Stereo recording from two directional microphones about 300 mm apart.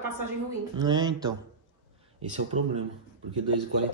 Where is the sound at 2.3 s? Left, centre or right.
Right.